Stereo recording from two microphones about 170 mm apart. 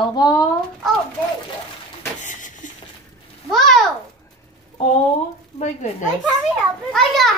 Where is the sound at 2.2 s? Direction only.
50° left (ahead or behind).